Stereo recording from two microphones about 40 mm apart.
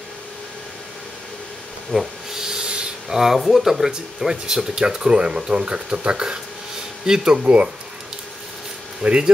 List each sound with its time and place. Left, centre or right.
1.9 s rub: centre
3.1 s speech: centre; by 7.7 s right
9.0 s speech: right